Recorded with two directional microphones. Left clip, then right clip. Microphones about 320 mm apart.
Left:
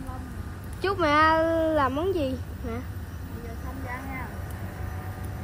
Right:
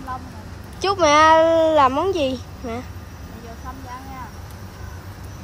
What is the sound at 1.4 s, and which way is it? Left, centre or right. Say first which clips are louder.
Speech: right 9 dB; right.